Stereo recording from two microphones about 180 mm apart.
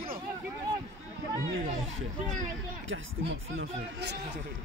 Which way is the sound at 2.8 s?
90° right.